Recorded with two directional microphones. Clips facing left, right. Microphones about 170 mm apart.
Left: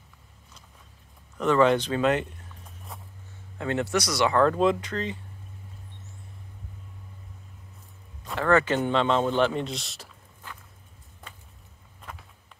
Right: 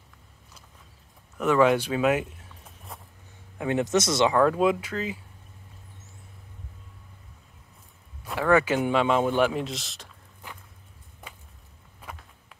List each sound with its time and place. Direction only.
1.4 s speech: 10° right (ahead or behind)
2.9 s vehicle: centre (ahead or behind)
3.5 s speech: 15° right (ahead or behind)
4.4 s speech: 10° right (ahead or behind)
8.2 s speech: 10° right (ahead or behind)
10.4 s walk: 15° right (ahead or behind)